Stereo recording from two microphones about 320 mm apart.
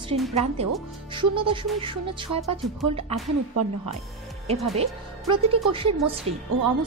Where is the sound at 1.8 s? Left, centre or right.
Centre.